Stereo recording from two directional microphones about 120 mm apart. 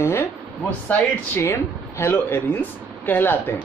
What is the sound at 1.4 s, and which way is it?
Speech, 20° left (ahead or behind).